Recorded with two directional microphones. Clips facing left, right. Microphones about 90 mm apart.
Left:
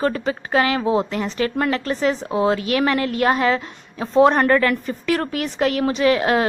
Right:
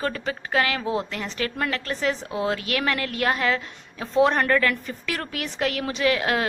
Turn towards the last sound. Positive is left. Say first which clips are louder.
# left 5 dB
turn(degrees=30)  # may be behind; listen again after turning